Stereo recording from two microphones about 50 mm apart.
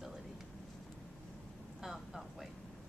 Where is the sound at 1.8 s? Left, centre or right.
Centre.